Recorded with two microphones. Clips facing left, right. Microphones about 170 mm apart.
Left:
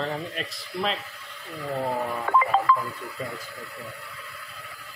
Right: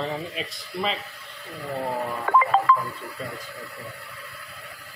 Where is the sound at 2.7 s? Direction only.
60° right (ahead or behind).